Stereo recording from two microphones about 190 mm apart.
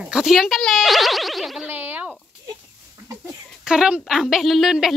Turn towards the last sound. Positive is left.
turn(degrees=0)  # may be behind; listen again after turning